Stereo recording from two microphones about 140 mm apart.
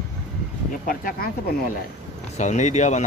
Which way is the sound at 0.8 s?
90° left.